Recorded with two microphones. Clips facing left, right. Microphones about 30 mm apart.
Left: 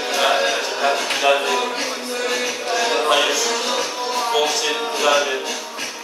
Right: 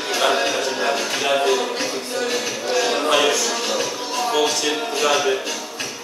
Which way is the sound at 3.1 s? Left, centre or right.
Centre.